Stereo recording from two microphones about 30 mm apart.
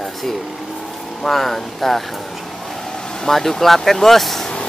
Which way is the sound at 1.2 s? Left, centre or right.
Centre.